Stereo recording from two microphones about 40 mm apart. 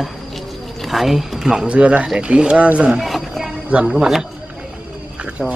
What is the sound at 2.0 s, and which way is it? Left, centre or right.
Speech, centre.